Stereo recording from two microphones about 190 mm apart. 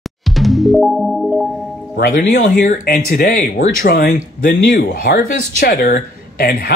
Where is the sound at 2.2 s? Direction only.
40° left (ahead or behind).